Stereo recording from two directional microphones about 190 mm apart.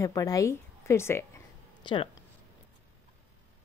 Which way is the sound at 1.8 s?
25° left (ahead or behind).